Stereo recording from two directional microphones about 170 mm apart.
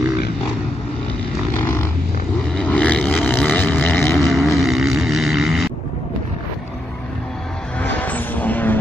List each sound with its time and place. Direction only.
1.6 s a sound: 15° left (ahead or behind)
4.2 s vehicle: centre (ahead or behind)
7.8 s vehicle: 10° left (ahead or behind)